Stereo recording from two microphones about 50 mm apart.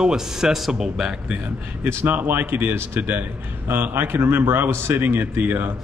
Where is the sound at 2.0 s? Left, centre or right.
Right.